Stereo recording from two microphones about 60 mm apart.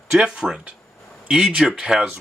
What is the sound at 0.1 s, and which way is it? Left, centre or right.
Speech, centre.